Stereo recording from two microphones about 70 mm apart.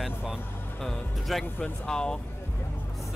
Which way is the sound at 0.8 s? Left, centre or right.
Centre.